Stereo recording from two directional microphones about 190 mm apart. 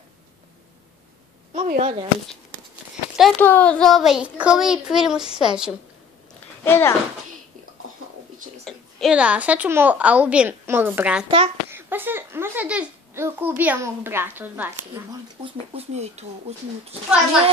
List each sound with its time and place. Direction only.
1.5 s speech: 35° right (ahead or behind)
3.2 s a child's voice: 5° left (ahead or behind)
6.6 s speech: 15° left (ahead or behind)
8.6 s a woman's voice: 5° right (ahead or behind)
11.2 s a child's voice: 30° right (ahead or behind)
11.7 s a child's voice: 10° right (ahead or behind)
15.7 s speech: 35° right (ahead or behind)